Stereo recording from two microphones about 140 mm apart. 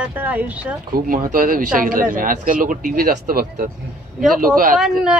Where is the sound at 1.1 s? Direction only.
75° right (ahead or behind).